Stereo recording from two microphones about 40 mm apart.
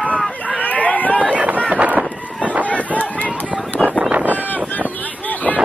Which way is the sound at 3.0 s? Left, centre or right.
Left.